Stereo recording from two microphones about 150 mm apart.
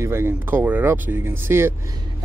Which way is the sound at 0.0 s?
15° right (ahead or behind).